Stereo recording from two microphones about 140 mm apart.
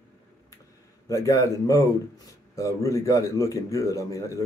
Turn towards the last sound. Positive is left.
turn(degrees=20)  # may be behind; listen again after turning